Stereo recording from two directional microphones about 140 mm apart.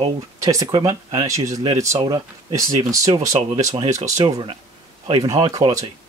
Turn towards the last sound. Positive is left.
turn(degrees=-25)  # may be behind; listen again after turning